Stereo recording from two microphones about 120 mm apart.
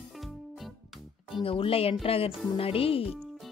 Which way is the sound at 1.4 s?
50° left (ahead or behind).